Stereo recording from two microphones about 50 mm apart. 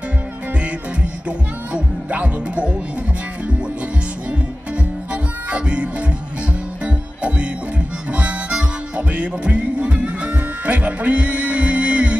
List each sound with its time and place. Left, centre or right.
1.7 s music: right
5.1 s music: right